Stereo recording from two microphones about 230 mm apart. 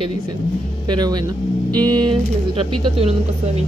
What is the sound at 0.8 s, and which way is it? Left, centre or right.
Speech, centre.